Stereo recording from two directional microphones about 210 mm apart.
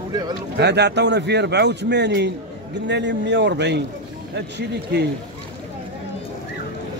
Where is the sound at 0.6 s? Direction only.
55° right (ahead or behind).